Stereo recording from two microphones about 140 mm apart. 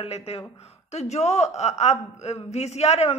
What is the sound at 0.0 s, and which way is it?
A woman's voice, 45° left (ahead or behind).